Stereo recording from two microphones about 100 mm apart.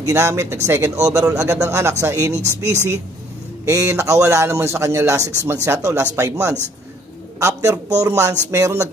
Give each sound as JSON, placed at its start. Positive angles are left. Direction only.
{"t": 0.0, "sound": "a man's voice", "side_deg": -30}
{"t": 3.6, "sound": "a man's voice", "side_deg": -30}